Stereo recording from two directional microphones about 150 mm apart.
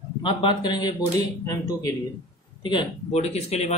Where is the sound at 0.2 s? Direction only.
35° left (ahead or behind).